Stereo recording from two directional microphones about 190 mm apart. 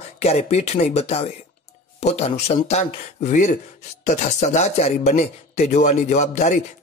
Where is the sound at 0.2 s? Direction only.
35° left (ahead or behind).